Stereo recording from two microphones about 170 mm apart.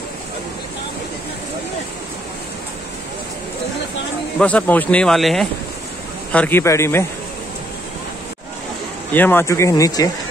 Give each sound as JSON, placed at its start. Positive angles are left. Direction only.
{"t": 4.4, "sound": "speech", "side_deg": 10}
{"t": 9.1, "sound": "speech", "side_deg": 10}